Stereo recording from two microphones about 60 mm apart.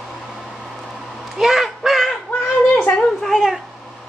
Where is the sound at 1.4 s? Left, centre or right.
Centre.